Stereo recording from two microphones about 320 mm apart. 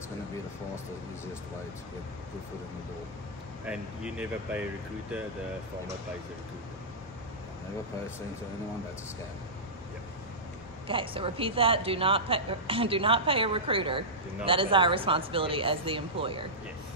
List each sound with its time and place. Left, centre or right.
3.6 s speech: centre
10.9 s a woman's voice: centre